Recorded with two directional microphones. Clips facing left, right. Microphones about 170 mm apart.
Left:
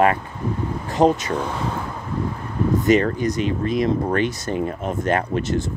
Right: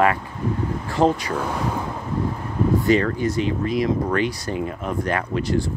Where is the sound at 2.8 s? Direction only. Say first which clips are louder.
Left 3 dB; 20° left (ahead or behind).